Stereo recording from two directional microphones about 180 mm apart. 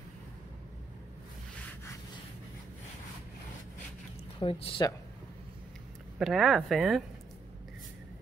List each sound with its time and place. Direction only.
4.4 s speech: 30° left (ahead or behind)
6.1 s speech: centre (ahead or behind)